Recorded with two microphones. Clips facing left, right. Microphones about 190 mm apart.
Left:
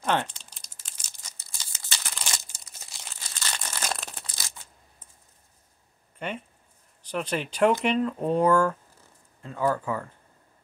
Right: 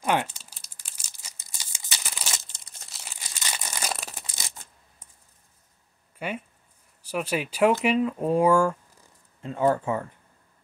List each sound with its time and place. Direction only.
0.0 s crumpling: 10° right (ahead or behind)
2.5 s crumpling: 5° left (ahead or behind)
3.2 s crumpling: 15° right (ahead or behind)
6.1 s speech: 5° right (ahead or behind)
9.4 s speech: 20° right (ahead or behind)